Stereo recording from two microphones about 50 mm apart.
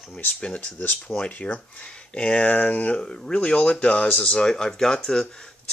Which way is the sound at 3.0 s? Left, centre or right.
Centre.